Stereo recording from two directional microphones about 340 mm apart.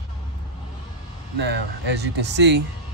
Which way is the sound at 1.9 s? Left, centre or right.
Right.